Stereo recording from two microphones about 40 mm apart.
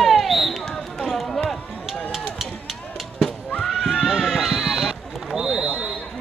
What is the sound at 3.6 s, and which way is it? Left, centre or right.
Neigh, centre.